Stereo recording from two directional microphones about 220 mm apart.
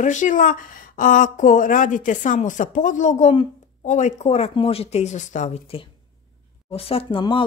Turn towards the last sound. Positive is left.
turn(degrees=25)  # may be behind; listen again after turning